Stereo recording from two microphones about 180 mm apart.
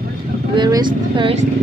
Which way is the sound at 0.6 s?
25° right (ahead or behind).